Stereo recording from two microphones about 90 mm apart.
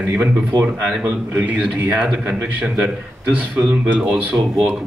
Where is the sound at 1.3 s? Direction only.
20° right (ahead or behind).